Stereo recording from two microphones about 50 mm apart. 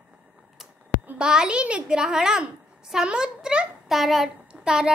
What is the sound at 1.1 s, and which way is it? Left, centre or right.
A child's voice, centre.